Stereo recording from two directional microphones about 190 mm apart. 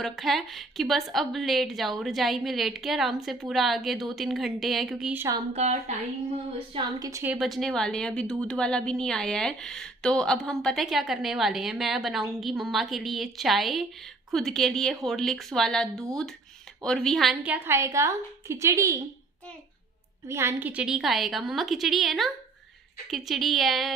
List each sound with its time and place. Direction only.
0.0 s a woman's voice: centre (ahead or behind)
5.5 s a woman's voice: 35° right (ahead or behind)
6.7 s a woman's voice: 20° right (ahead or behind)
7.3 s a woman's voice: centre (ahead or behind)
20.2 s a woman's voice: 15° right (ahead or behind)